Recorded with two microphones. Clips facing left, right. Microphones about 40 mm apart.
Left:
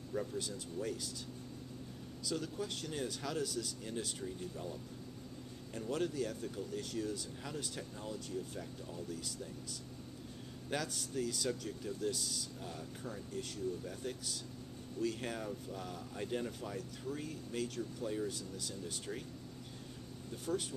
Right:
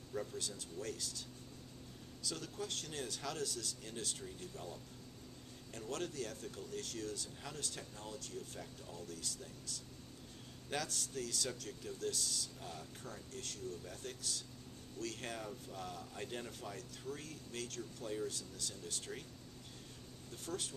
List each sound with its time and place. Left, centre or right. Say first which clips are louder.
0.1 s speech: left 3 dB; centre
2.2 s speech: left 4 dB; centre
5.8 s speech: left 5 dB; centre